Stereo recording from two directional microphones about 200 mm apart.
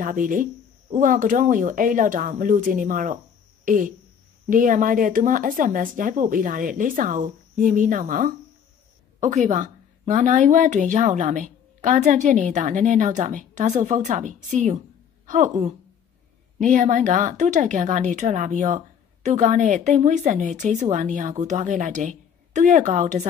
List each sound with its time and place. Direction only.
0.0 s a woman's voice: 40° right (ahead or behind)